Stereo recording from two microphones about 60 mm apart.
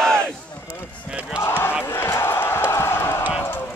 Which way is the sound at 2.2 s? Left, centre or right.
Left.